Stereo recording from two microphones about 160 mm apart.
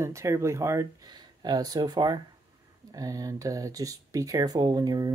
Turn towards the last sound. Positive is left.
turn(degrees=-25)  # may be behind; listen again after turning